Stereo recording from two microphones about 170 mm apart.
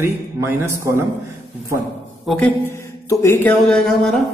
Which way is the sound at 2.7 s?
15° left (ahead or behind).